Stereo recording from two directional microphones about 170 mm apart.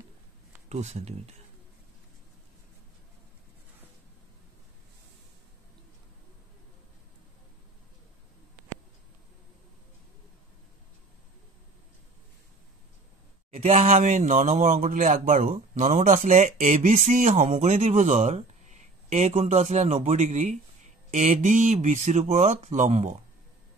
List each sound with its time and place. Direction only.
0.7 s speech: 40° right (ahead or behind)
13.5 s speech: 40° right (ahead or behind)